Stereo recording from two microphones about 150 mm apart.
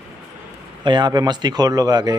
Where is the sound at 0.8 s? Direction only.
30° right (ahead or behind).